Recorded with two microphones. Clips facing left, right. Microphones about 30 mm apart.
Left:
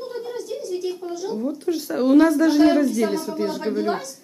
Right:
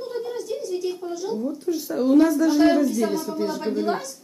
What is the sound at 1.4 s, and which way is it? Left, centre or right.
Speech, left.